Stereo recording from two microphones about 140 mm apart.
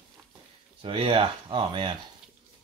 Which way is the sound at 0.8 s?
40° right (ahead or behind).